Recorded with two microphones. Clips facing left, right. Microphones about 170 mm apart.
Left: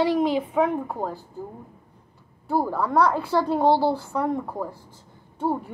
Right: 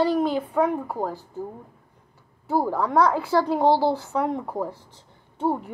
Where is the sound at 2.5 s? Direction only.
15° right (ahead or behind).